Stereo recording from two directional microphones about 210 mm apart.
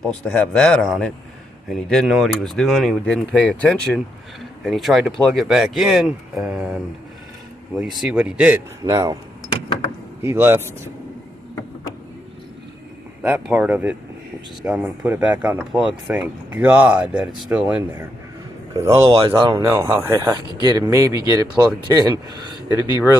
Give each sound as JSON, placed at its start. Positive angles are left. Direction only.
{"t": 0.0, "sound": "speech", "side_deg": 5}
{"t": 7.8, "sound": "speech", "side_deg": 0}
{"t": 10.2, "sound": "speech", "side_deg": -10}
{"t": 13.2, "sound": "speech", "side_deg": -10}
{"t": 19.5, "sound": "speech", "side_deg": -10}